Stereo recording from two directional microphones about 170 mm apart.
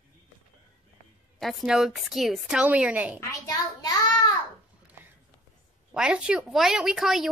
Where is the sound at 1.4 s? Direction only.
Centre (ahead or behind).